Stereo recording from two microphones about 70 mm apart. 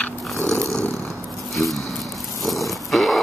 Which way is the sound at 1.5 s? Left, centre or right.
Centre.